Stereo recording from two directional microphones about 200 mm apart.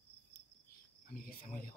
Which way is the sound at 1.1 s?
45° left (ahead or behind).